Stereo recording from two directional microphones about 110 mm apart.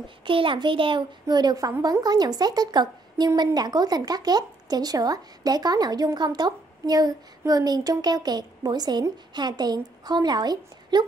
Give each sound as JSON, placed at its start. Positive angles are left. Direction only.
{"t": 0.2, "sound": "a child's voice", "side_deg": -50}